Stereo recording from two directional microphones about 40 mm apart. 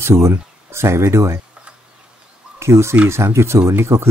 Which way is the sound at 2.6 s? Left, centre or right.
Right.